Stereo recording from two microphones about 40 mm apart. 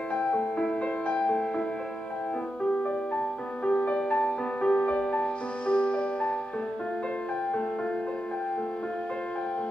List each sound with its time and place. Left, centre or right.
0.1 s music: left
3.6 s music: left